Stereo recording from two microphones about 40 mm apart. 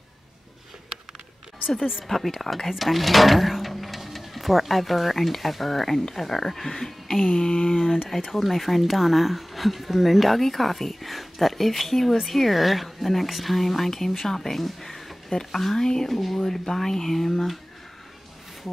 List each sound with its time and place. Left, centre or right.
2.0 s speech: centre
7.3 s speech: centre
8.4 s speech: centre